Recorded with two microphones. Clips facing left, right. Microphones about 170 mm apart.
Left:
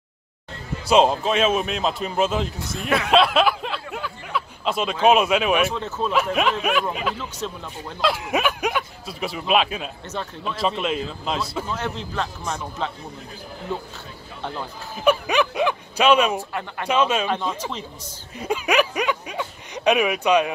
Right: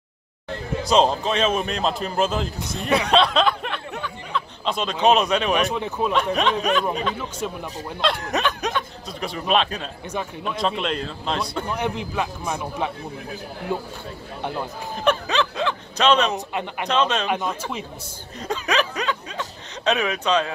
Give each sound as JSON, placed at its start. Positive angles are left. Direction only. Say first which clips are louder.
{"t": 0.8, "sound": "a man's voice", "louder": "left 2 dB", "side_deg": 5}
{"t": 3.9, "sound": "a sound", "louder": "even", "side_deg": 5}
{"t": 5.0, "sound": "speech", "louder": "left 1 dB", "side_deg": 5}
{"t": 5.7, "sound": "a man's voice", "louder": "right 2 dB", "side_deg": -15}
{"t": 6.1, "sound": "a man's voice", "louder": "left 1 dB", "side_deg": 5}
{"t": 7.2, "sound": "a man's voice", "louder": "right 2 dB", "side_deg": -10}
{"t": 8.0, "sound": "a man's voice", "louder": "left 1 dB", "side_deg": 5}
{"t": 11.6, "sound": "a man's voice", "louder": "right 3 dB", "side_deg": -15}
{"t": 15.0, "sound": "snicker", "louder": "left 2 dB", "side_deg": 10}
{"t": 16.3, "sound": "a man's voice", "louder": "right 1 dB", "side_deg": -20}
{"t": 16.8, "sound": "speech", "louder": "left 2 dB", "side_deg": 10}
{"t": 17.3, "sound": "a man's voice", "louder": "even", "side_deg": -10}
{"t": 18.4, "sound": "speech", "louder": "left 3 dB", "side_deg": 10}